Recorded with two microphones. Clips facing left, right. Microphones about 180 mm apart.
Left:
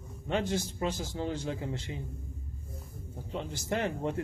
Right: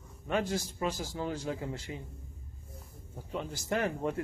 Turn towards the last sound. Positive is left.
turn(degrees=25)  # may be behind; listen again after turning